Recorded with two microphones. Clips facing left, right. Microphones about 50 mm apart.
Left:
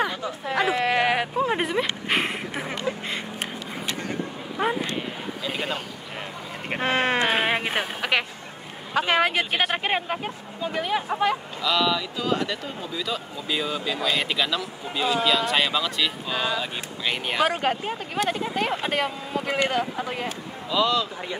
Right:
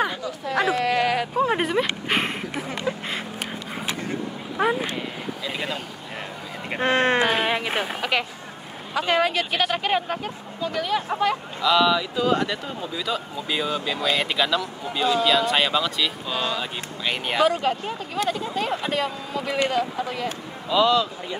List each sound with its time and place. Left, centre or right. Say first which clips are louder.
0.7 s a sound: even; left
1.4 s a sound: right 2 dB; centre
6.8 s sheep: right 3 dB; centre
7.2 s a sound: even; centre
8.9 s speech: even; left
9.3 s speech: even; left
11.6 s speech: right 5 dB; centre
16.3 s speech: even; centre
17.0 s speech: right 1 dB; centre
17.5 s speech: right 1 dB; left
20.7 s speech: right 4 dB; centre